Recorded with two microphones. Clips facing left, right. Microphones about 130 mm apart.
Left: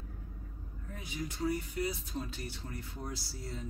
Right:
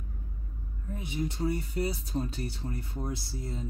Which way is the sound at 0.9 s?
25° right (ahead or behind).